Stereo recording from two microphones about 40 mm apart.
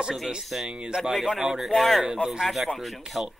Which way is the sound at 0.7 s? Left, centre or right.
Right.